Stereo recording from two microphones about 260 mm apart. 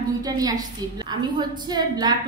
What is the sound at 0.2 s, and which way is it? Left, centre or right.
Speech, centre.